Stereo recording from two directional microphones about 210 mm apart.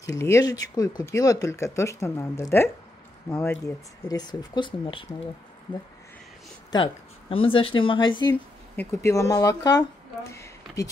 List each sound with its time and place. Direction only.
0.2 s speech: 15° left (ahead or behind)
6.7 s speech: 25° left (ahead or behind)